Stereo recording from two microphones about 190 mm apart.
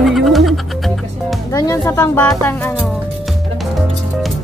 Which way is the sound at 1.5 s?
20° left (ahead or behind).